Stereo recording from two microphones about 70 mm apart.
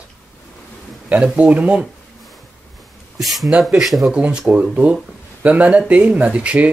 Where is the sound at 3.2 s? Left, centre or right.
Centre.